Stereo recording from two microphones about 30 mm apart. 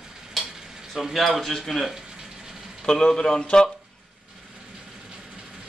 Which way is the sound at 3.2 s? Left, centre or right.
Left.